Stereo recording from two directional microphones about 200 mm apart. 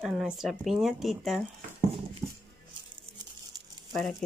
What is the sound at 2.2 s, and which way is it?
Music, 15° right (ahead or behind).